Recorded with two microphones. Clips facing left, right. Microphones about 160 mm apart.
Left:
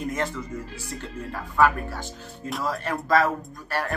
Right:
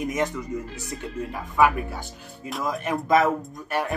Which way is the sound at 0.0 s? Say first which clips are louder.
Right 2 dB; 15° right (ahead or behind).